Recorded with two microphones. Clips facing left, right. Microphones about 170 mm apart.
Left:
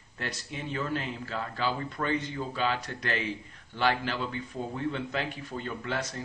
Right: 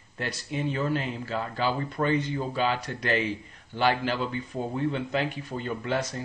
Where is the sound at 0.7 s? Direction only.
20° right (ahead or behind).